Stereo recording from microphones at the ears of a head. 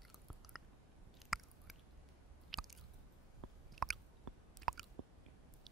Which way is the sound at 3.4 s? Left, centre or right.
Right.